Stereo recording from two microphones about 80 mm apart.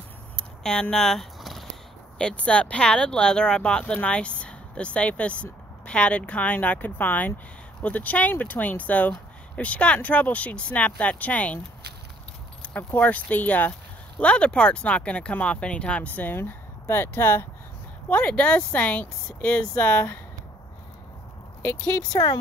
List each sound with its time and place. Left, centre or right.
0.4 s a sound: centre
2.1 s speech: centre
12.7 s speech: centre
18.0 s speech: centre
22.1 s speech: left